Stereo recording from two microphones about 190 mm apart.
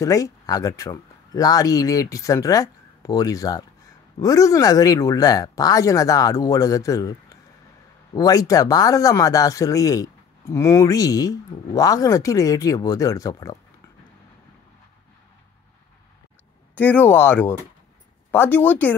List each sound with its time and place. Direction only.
0.0 s speech: 15° left (ahead or behind)
16.7 s speech: 10° left (ahead or behind)